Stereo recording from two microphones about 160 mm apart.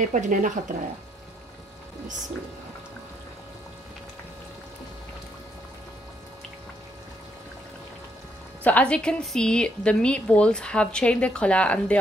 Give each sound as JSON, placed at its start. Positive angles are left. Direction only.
{"t": 0.0, "sound": "speech", "side_deg": -50}
{"t": 8.6, "sound": "a woman's voice", "side_deg": 10}